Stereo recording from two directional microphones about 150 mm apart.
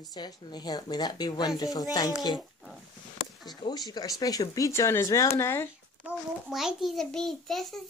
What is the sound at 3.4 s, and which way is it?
Speech, 25° left (ahead or behind).